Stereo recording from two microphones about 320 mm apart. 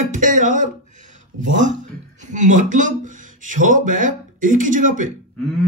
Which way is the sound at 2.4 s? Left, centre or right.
Right.